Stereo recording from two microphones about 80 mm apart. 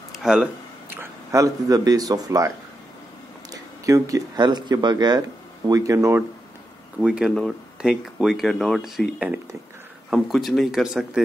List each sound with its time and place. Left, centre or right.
0.2 s speech: centre
1.3 s a man's voice: right
3.5 s a sound: right
4.4 s a man's voice: right
5.7 s a man's voice: right
7.0 s speech: centre
7.2 s speech: centre
7.8 s speech: centre
10.0 s speech: centre